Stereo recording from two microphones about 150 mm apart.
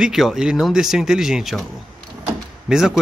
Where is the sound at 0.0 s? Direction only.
Centre (ahead or behind).